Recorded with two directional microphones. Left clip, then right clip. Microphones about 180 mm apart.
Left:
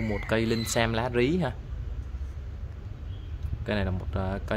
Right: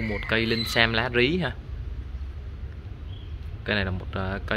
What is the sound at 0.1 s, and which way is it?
Speech, 25° left (ahead or behind).